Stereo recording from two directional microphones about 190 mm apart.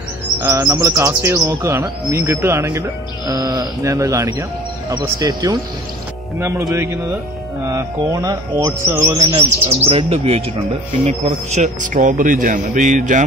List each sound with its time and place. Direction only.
0.4 s chirp: 15° right (ahead or behind)
9.7 s a man's voice: 30° right (ahead or behind)